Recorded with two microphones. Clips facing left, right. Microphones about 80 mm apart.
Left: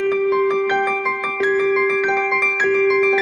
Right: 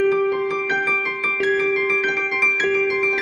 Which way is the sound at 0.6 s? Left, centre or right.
Left.